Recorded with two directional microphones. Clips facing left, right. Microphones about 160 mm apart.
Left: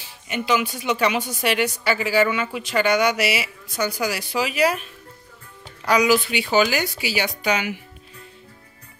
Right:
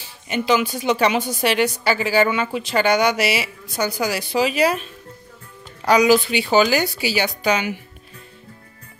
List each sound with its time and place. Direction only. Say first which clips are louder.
0.3 s a woman's voice: right 3 dB; 30° right (ahead or behind)
5.9 s a woman's voice: right 3 dB; 30° right (ahead or behind)